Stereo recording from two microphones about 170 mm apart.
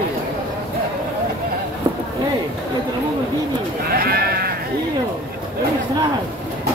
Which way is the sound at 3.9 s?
65° right (ahead or behind).